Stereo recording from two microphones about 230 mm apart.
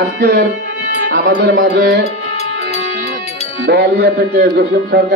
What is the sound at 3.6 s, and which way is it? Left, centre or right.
A man's voice, right.